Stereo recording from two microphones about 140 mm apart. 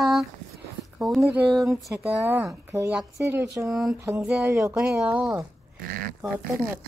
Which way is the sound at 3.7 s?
5° right (ahead or behind).